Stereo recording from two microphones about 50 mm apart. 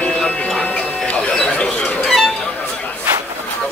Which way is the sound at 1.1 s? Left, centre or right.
Left.